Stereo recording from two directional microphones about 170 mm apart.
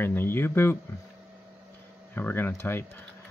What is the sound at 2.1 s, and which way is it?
Speech, 10° left (ahead or behind).